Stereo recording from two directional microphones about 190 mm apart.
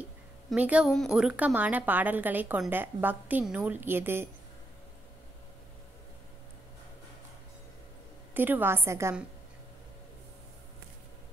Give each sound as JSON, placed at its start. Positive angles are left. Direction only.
{"t": 0.5, "sound": "a woman's voice", "side_deg": -5}
{"t": 8.4, "sound": "a woman's voice", "side_deg": -10}